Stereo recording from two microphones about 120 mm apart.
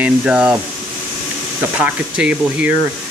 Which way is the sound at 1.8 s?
10° right (ahead or behind).